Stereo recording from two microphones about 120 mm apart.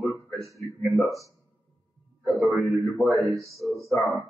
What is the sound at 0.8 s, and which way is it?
A man's voice, centre (ahead or behind).